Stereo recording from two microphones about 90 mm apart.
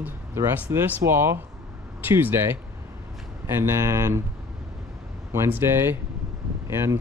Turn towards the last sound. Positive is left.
turn(degrees=-30)  # may be behind; listen again after turning